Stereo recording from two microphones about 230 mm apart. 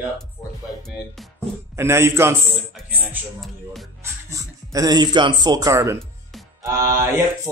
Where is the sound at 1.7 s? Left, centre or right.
Centre.